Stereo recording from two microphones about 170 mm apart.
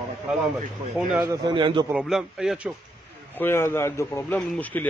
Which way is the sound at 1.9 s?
5° right (ahead or behind).